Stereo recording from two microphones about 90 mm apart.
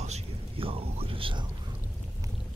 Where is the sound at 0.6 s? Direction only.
90° right; by 1.5 s 70° right (ahead or behind).